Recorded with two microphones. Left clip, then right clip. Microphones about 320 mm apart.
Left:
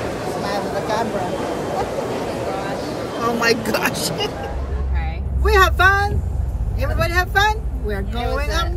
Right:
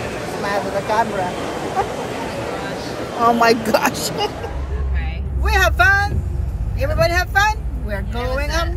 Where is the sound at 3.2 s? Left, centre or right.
Centre.